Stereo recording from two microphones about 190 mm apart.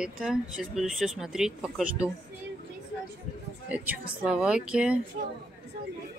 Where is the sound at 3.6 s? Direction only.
5° right (ahead or behind).